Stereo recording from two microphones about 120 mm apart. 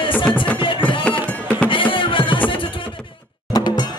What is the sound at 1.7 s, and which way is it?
Music, 45° left (ahead or behind).